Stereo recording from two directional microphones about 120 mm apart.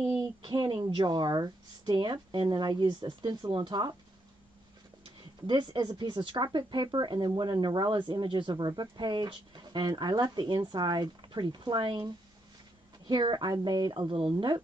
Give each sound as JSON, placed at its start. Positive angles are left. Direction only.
{"t": 0.4, "sound": "speech", "side_deg": -40}
{"t": 5.0, "sound": "speech", "side_deg": -40}
{"t": 13.1, "sound": "speech", "side_deg": -40}